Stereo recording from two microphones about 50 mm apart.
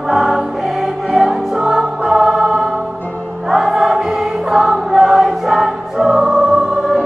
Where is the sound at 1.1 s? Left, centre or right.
Centre.